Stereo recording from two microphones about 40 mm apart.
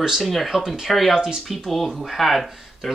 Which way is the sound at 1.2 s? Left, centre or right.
Right.